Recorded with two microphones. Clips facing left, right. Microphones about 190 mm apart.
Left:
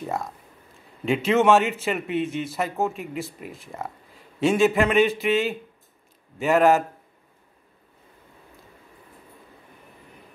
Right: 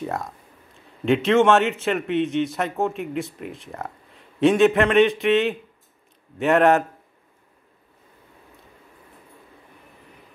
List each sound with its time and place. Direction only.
0.0 s a man's voice: centre (ahead or behind)